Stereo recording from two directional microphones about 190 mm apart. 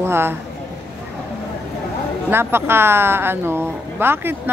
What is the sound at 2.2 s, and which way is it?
A woman's voice, 10° right (ahead or behind).